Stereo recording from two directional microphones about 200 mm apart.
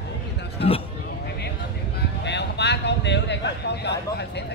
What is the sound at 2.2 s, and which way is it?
Speech, 60° left (ahead or behind).